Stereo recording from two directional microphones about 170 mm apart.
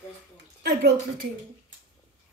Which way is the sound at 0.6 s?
75° right (ahead or behind).